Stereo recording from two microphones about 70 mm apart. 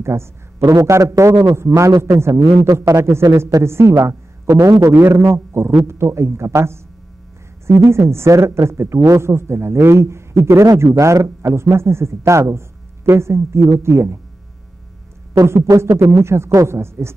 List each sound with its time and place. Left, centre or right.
0.0 s a man's voice: right
1.9 s a man's voice: right
2.1 s a woman's voice: right
4.9 s a woman's voice: right
15.4 s a woman's voice: right